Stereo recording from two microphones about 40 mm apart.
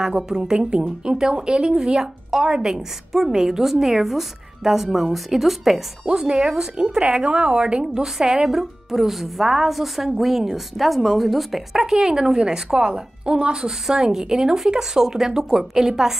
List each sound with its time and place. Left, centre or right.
0.0 s a woman's voice: centre
2.3 s a woman's voice: centre
6.4 s a woman's voice: centre
7.0 s a woman's voice: right; by 11.8 s centre
11.8 s a woman's voice: centre